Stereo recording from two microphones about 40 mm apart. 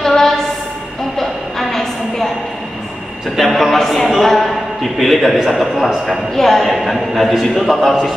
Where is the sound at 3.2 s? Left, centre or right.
Centre.